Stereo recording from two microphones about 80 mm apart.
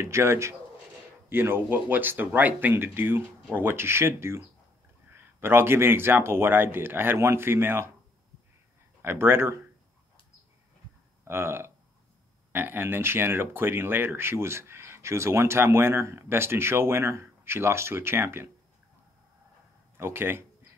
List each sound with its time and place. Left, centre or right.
0.0 s speech: right
9.0 s speech: right
11.2 s speech: right
20.0 s speech: right